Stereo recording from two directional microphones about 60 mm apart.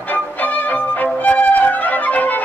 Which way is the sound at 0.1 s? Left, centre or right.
Left.